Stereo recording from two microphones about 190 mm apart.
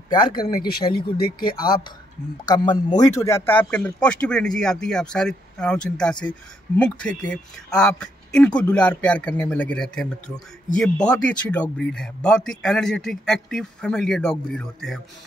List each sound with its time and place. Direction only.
0.1 s a man's voice: 20° left (ahead or behind)
0.6 s speech: 55° left (ahead or behind)
2.4 s a man's voice: 20° left (ahead or behind); by 15.0 s centre (ahead or behind)